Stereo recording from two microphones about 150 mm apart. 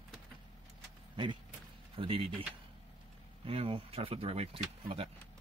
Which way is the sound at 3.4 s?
40° right (ahead or behind).